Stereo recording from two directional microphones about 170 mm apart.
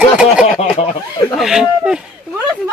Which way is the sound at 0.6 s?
40° left (ahead or behind).